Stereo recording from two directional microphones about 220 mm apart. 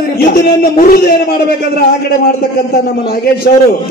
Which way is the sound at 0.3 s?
40° left (ahead or behind).